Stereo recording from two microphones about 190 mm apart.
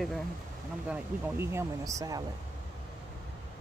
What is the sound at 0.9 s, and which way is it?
Speech, 15° right (ahead or behind).